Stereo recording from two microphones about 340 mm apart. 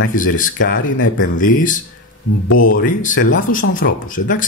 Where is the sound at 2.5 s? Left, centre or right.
Left.